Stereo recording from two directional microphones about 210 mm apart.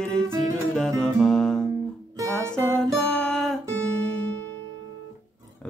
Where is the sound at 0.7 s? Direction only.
Centre (ahead or behind).